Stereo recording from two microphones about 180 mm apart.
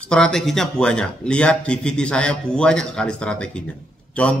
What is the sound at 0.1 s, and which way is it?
A man's voice, 5° left (ahead or behind).